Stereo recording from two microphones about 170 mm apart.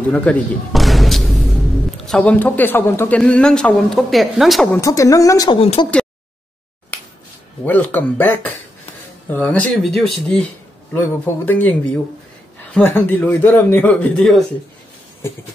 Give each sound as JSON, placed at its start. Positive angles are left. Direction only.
{"t": 0.1, "sound": "a man's voice", "side_deg": 10}
{"t": 4.7, "sound": "speech", "side_deg": 20}
{"t": 5.6, "sound": "speech", "side_deg": 35}
{"t": 6.9, "sound": "finger snapping", "side_deg": 10}
{"t": 7.6, "sound": "a man's voice", "side_deg": 10}
{"t": 12.7, "sound": "a man's voice", "side_deg": 10}